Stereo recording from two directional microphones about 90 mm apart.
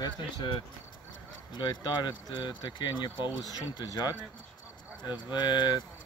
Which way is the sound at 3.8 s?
50° left (ahead or behind).